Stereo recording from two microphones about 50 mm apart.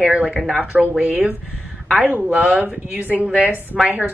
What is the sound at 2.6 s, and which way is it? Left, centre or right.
Speech, right.